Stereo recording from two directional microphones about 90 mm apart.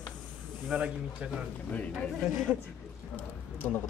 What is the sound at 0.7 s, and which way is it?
Speech, 15° right (ahead or behind).